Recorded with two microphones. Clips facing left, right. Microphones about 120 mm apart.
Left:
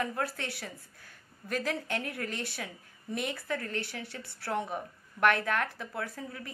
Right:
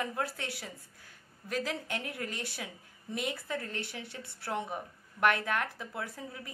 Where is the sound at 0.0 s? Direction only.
15° right (ahead or behind).